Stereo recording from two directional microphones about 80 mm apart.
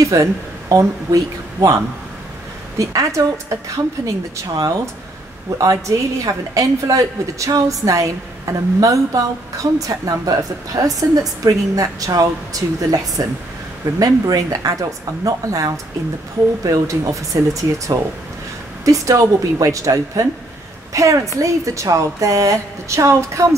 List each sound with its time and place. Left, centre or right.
0.0 s a woman's voice: right
2.8 s a woman's voice: right
5.6 s a woman's voice: right